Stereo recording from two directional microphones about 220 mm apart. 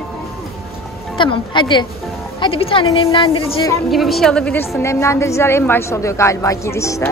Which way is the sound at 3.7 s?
Centre (ahead or behind).